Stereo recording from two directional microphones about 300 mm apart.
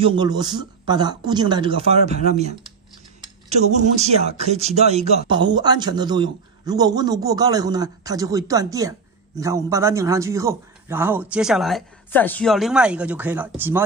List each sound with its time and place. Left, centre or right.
0.0 s a man's voice: centre
3.4 s a man's voice: right; by 13.8 s centre